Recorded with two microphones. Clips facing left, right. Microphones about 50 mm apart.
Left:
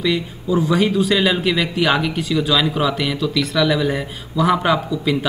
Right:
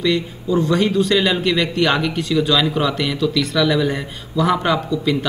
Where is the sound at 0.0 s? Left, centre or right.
Centre.